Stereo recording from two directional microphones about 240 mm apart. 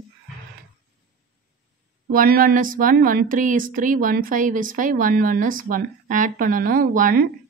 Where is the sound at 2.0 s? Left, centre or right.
Right.